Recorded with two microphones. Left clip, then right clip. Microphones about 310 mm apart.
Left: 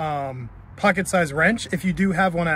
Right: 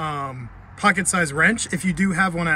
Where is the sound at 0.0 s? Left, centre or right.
Centre.